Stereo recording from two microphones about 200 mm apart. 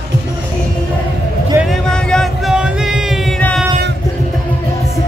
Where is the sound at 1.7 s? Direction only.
5° left (ahead or behind).